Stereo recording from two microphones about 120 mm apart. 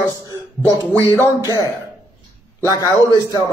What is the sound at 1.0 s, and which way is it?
A man's voice, 30° left (ahead or behind).